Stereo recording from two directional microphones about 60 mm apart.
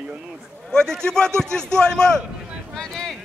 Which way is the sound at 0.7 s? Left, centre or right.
Centre.